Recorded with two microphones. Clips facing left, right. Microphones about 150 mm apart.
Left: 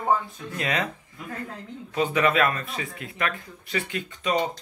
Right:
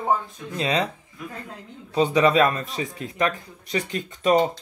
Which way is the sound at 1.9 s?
30° right (ahead or behind).